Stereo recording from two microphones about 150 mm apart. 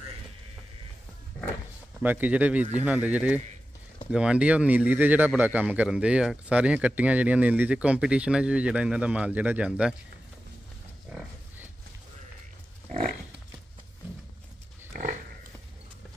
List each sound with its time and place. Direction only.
2.0 s speech: 10° right (ahead or behind)
11.1 s pig: 10° right (ahead or behind)
12.9 s pig: 50° right (ahead or behind)
14.9 s dog: 60° right (ahead or behind)